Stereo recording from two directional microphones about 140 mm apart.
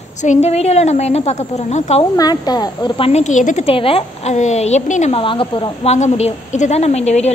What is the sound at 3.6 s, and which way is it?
A woman's voice, 40° left (ahead or behind).